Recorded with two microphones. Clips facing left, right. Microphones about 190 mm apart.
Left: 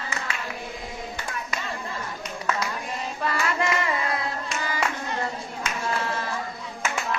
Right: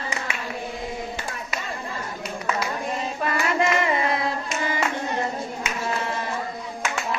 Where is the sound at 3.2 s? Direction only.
20° right (ahead or behind).